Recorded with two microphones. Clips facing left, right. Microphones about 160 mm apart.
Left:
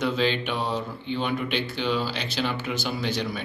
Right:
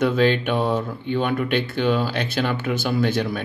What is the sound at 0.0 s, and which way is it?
Speech, 50° right (ahead or behind).